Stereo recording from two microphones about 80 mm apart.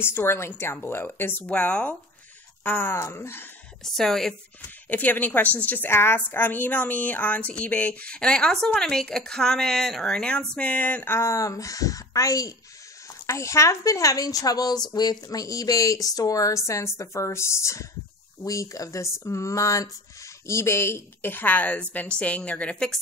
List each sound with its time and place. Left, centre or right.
0.0 s speech: left
1.5 s a woman's voice: centre
3.0 s speech: left
3.8 s a woman's voice: centre
4.8 s a woman's voice: left
11.1 s a woman's voice: left; by 22.9 s centre